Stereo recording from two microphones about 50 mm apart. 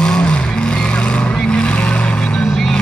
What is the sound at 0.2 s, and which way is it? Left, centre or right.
Vehicle, left.